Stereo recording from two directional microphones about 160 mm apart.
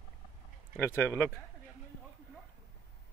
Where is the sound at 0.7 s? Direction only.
15° left (ahead or behind).